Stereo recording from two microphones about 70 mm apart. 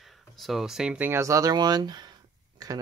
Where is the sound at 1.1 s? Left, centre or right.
Right.